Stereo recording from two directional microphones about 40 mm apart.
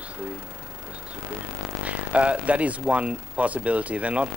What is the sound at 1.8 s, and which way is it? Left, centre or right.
Speech, right.